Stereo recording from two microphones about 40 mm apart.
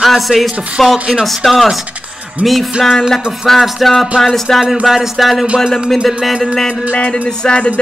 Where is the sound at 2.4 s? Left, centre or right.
Right.